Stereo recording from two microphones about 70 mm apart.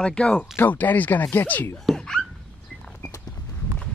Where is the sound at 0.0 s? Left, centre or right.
Centre.